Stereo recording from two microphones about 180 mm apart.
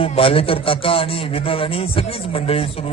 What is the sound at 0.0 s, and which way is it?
A man's voice, 30° left (ahead or behind).